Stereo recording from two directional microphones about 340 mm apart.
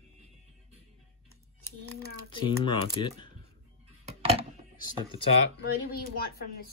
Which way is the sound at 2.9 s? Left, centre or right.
Centre.